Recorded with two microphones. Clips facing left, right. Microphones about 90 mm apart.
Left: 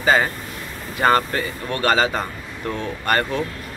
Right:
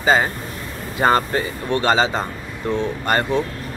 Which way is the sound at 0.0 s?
20° right (ahead or behind).